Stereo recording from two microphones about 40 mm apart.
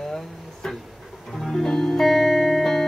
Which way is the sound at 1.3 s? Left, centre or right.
Centre.